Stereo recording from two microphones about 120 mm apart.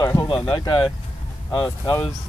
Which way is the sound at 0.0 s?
30° left (ahead or behind).